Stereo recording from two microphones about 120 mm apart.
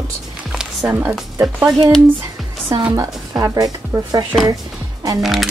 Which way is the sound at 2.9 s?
25° right (ahead or behind).